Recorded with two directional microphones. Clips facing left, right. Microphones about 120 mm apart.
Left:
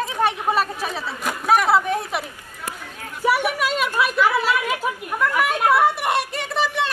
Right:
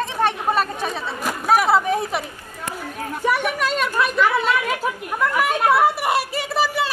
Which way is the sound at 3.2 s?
5° left (ahead or behind).